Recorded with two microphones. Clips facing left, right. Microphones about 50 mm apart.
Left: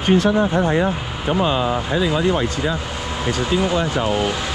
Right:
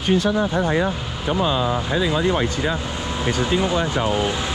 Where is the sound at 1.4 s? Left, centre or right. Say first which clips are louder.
Left 1 dB; left.